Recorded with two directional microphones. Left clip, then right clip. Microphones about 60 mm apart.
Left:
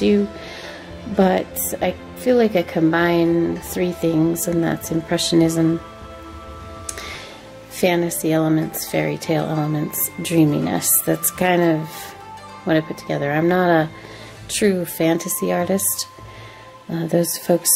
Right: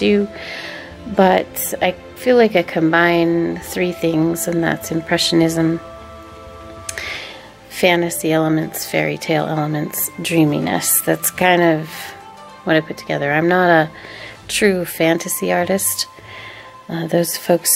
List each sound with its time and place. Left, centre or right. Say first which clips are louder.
0.0 s speech: right 2 dB; right
6.9 s music: right 6 dB; right
7.7 s speech: right 4 dB; right